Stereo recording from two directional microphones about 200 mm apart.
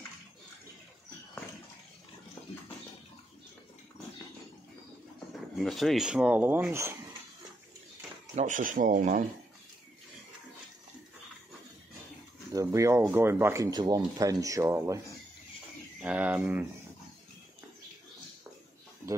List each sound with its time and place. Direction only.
5.3 s speech: centre (ahead or behind)
8.4 s speech: 40° right (ahead or behind)
12.5 s speech: 15° right (ahead or behind)
16.0 s speech: 10° right (ahead or behind)